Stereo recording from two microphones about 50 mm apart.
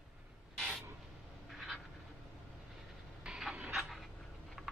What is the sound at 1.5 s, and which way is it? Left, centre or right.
Vehicle, centre.